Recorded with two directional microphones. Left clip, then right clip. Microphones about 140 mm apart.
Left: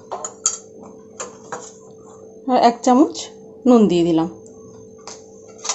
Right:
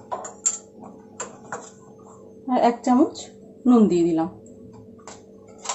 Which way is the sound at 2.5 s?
80° left.